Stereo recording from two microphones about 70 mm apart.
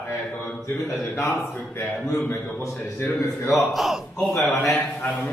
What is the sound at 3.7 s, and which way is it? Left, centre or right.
Speech, centre.